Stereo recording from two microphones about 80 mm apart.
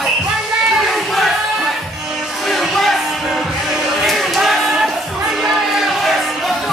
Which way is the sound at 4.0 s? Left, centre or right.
Centre.